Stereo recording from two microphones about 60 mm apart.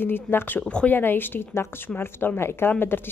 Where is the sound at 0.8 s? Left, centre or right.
Left.